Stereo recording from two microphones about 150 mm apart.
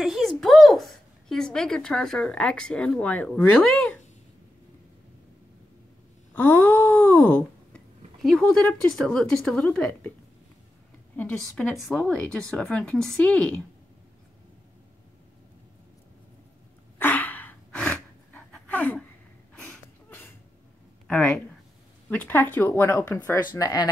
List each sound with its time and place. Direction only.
0.0 s a woman's voice: centre (ahead or behind)
6.3 s a sound: 10° left (ahead or behind)
11.1 s speech: 10° left (ahead or behind)
17.0 s gasp: 10° left (ahead or behind)
19.5 s a sound: 5° left (ahead or behind)
22.1 s speech: 10° left (ahead or behind)
23.5 s speech: 25° left (ahead or behind)